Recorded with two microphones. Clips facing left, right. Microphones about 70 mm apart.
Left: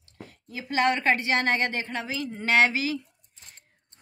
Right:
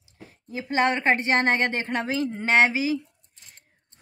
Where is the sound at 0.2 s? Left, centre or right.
Right.